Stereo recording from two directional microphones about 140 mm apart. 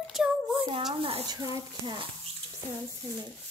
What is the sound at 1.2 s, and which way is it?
Speech, 30° right (ahead or behind).